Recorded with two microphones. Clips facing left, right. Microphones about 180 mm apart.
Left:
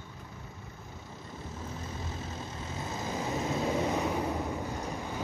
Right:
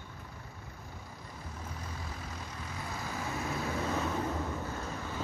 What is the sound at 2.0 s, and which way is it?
Vehicle, 25° left (ahead or behind).